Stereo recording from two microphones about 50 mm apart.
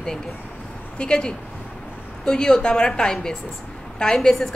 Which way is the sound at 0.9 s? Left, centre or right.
Centre.